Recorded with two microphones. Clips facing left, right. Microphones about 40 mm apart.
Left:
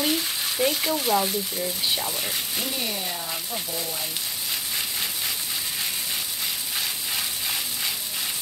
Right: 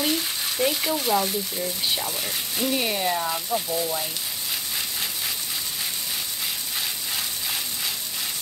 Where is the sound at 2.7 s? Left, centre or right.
Right.